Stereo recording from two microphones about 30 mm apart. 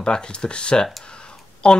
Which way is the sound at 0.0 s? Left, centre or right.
Left.